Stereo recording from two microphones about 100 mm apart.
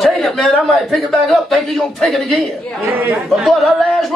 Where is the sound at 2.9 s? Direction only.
20° right (ahead or behind).